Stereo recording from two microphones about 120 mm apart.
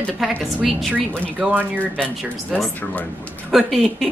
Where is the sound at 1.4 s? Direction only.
15° right (ahead or behind).